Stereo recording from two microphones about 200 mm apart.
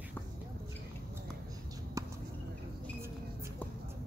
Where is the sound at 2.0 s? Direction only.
15° right (ahead or behind).